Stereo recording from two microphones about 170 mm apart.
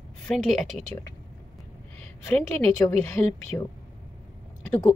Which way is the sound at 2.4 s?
10° left (ahead or behind).